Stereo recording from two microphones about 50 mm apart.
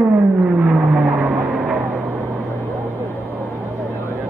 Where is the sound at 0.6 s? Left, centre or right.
Right.